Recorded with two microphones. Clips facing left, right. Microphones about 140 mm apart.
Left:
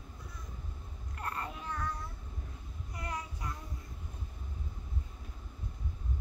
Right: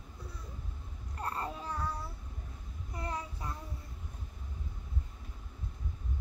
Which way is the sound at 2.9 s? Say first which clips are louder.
Right 2 dB; 30° right (ahead or behind).